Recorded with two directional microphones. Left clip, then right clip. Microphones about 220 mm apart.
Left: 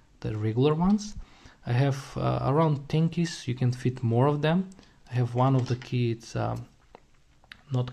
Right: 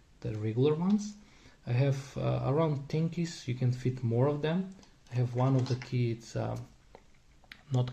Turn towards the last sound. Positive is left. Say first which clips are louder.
# left 2 dB
turn(degrees=15)  # may be behind; listen again after turning